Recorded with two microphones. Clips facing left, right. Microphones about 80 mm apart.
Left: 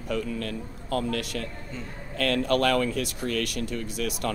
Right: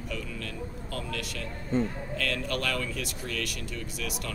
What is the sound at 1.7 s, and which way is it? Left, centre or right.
Speech, right.